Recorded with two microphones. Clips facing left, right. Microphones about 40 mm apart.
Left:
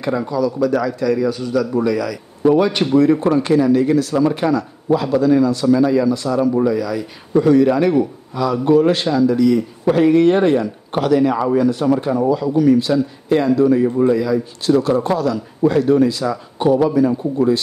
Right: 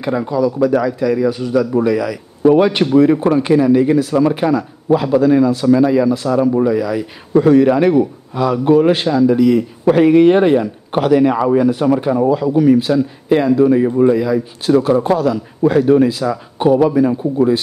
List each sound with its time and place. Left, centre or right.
0.0 s a man's voice: centre
16.5 s speech: right